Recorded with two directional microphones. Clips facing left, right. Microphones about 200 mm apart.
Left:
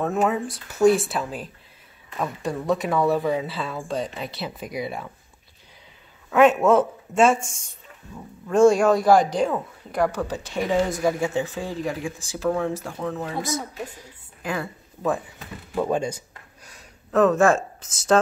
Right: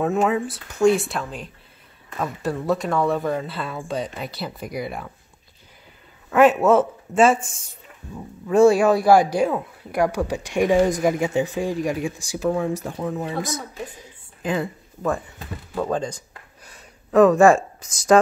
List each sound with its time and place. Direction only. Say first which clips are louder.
0.0 s speech: right 2 dB; centre (ahead or behind)
6.6 s speech: right 1 dB; 5° right (ahead or behind)
8.5 s a woman's voice: right 1 dB; 5° right (ahead or behind)
15.7 s speech: left 1 dB; 10° left (ahead or behind)
16.6 s a sound: right 1 dB; 5° right (ahead or behind)
17.6 s speech: right 1 dB; 5° left (ahead or behind)